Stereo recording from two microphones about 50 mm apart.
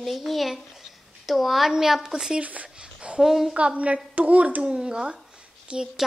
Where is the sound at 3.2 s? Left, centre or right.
Centre.